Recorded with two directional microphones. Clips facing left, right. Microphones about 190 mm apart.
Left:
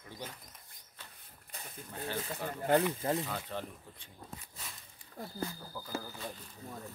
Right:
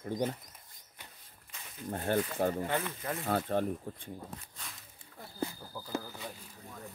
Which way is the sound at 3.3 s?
50° right (ahead or behind).